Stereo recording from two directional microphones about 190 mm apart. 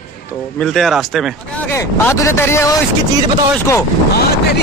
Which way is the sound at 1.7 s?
15° left (ahead or behind).